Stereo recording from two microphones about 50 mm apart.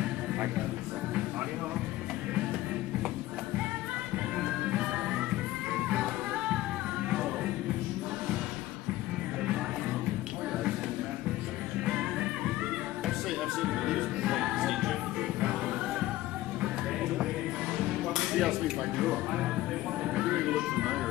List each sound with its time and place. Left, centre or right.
4.4 s music: centre
11.8 s music: centre
13.6 s music: centre
17.7 s music: centre